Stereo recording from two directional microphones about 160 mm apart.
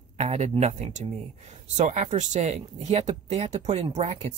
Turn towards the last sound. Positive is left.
turn(degrees=-45)  # may be behind; listen again after turning